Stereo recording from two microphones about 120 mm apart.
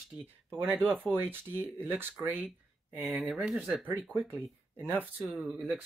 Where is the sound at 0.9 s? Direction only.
15° right (ahead or behind).